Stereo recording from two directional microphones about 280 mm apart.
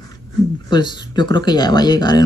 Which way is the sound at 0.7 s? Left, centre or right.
Centre.